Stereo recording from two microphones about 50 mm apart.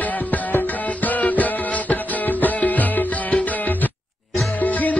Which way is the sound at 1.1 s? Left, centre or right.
Left.